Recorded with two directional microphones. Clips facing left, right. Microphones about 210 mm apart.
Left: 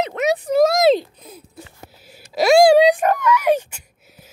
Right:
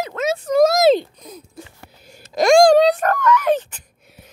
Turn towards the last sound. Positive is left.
turn(degrees=10)  # may be behind; listen again after turning